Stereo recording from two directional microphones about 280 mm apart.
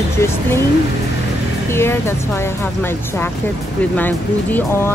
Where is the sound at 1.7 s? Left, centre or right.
Centre.